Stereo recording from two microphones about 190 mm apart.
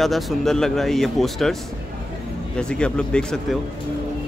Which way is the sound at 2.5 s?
5° left (ahead or behind).